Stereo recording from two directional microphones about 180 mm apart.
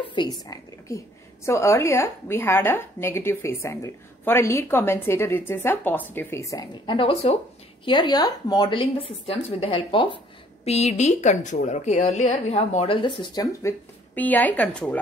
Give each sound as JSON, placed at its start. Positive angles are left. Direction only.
{"t": 0.0, "sound": "a woman's voice", "side_deg": 25}